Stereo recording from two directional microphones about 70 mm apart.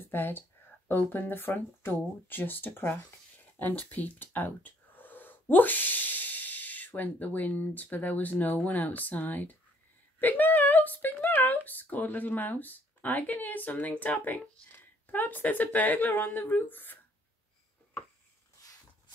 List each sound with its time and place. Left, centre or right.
0.0 s speech: left